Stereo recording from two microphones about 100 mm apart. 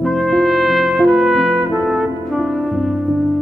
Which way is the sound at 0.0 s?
Centre (ahead or behind).